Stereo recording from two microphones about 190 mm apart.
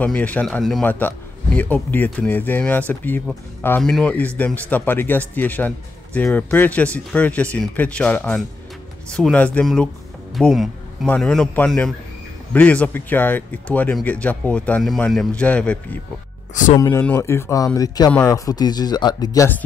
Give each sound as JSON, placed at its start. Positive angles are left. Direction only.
{"t": 0.0, "sound": "speech", "side_deg": 10}
{"t": 10.3, "sound": "music", "side_deg": 0}
{"t": 11.1, "sound": "speech", "side_deg": 5}
{"t": 16.7, "sound": "speech", "side_deg": 20}